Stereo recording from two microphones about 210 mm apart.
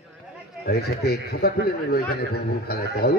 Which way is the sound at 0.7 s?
50° left (ahead or behind).